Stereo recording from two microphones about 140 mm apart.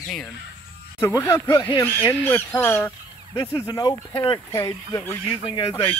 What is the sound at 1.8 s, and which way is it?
Speech, 15° left (ahead or behind).